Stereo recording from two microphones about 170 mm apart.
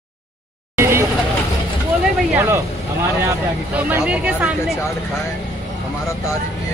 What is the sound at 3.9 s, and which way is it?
Speech, 10° right (ahead or behind).